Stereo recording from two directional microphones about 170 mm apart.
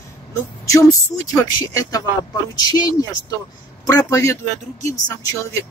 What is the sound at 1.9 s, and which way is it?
Speech, 20° left (ahead or behind).